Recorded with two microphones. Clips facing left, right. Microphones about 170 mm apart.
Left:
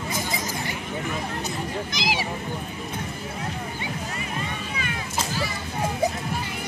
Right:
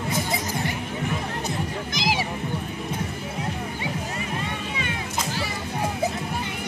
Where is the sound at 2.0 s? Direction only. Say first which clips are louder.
Right 3 dB; 50° right (ahead or behind).